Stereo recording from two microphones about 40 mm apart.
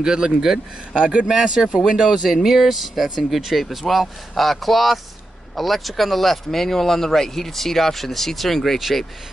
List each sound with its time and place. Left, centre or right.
0.0 s speech: centre